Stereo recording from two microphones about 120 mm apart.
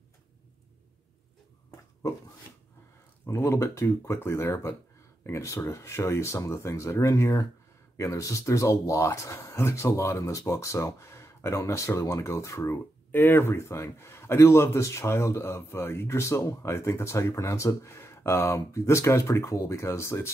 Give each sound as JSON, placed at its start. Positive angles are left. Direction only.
{"t": 3.3, "sound": "speech", "side_deg": 20}